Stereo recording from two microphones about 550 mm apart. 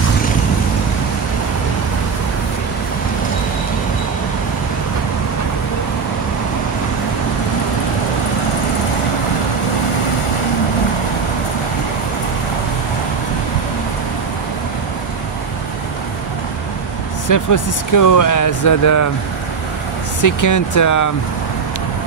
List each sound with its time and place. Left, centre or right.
17.3 s speech: left
20.2 s speech: left